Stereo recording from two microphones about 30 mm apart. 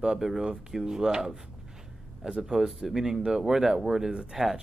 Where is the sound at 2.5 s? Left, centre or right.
Centre.